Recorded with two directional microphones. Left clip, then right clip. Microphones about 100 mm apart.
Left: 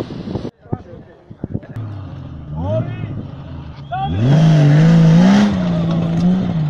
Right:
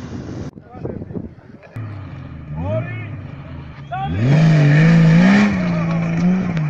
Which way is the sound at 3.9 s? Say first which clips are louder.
Left 2 dB; 20° right (ahead or behind).